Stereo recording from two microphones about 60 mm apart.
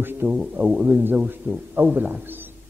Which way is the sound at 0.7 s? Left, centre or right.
Right.